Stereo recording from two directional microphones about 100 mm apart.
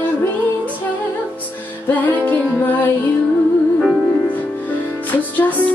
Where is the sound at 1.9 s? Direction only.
20° left (ahead or behind).